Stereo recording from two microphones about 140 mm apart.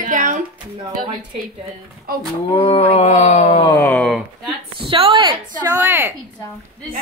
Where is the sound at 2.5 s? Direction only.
40° left (ahead or behind).